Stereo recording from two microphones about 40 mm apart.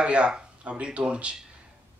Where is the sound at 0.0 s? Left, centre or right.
Right.